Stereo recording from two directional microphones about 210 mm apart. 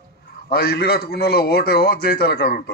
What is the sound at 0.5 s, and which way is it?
A man's voice, 50° left (ahead or behind).